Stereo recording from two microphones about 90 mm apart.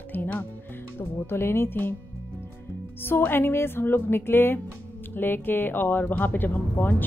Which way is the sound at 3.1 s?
25° left (ahead or behind).